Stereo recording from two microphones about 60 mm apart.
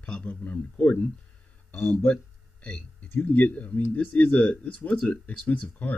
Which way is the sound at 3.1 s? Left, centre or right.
Left.